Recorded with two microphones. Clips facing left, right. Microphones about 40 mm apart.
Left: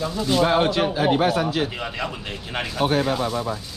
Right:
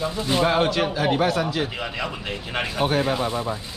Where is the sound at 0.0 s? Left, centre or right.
Centre.